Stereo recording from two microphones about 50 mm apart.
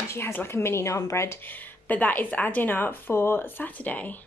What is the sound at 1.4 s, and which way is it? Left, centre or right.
Speech, left.